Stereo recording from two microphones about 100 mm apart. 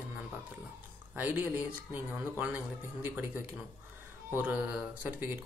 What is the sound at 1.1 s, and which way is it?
Speech, 20° right (ahead or behind).